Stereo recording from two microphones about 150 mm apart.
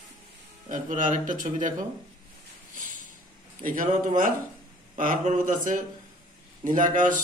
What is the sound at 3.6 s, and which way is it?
Speech, 65° right (ahead or behind).